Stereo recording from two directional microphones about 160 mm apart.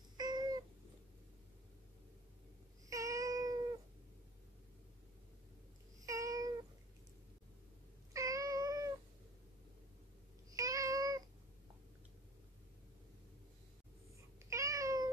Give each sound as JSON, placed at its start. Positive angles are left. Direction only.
{"t": 0.2, "sound": "cat", "side_deg": -25}
{"t": 2.9, "sound": "child singing", "side_deg": -20}
{"t": 6.0, "sound": "cat", "side_deg": -20}
{"t": 8.1, "sound": "cat", "side_deg": -20}
{"t": 10.5, "sound": "a sound", "side_deg": -20}
{"t": 14.5, "sound": "meow", "side_deg": -20}